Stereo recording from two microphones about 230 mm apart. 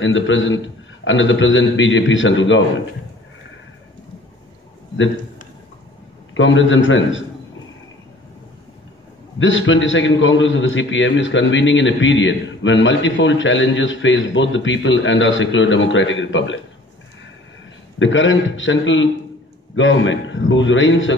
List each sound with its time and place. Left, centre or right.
0.0 s a man's voice: left
6.3 s a man's voice: left
9.4 s a man's voice: left
17.9 s a man's voice: left